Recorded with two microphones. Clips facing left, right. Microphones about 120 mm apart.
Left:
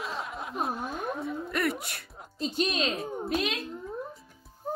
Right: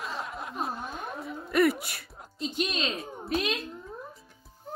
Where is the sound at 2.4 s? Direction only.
35° left (ahead or behind).